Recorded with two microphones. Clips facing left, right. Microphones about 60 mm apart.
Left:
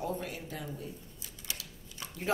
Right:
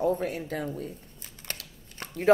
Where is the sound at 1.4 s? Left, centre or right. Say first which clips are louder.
Right 4 dB; right.